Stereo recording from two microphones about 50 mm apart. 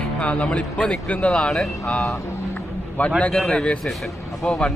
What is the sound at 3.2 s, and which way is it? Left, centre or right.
Speech, centre.